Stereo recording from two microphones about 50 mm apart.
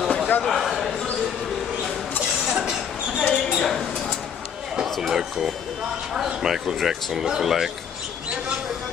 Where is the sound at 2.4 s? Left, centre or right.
Centre.